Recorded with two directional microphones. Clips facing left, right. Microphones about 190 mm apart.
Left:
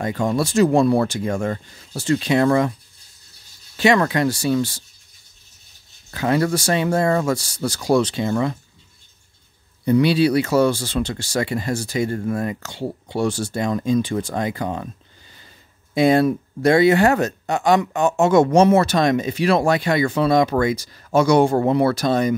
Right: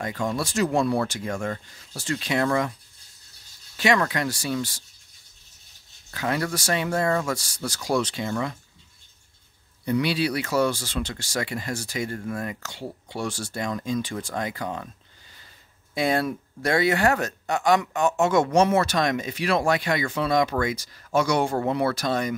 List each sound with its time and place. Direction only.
0.0 s speech: 30° left (ahead or behind)
3.7 s speech: 30° left (ahead or behind)
6.1 s speech: 30° left (ahead or behind)
9.8 s speech: 30° left (ahead or behind)
15.9 s speech: 20° left (ahead or behind)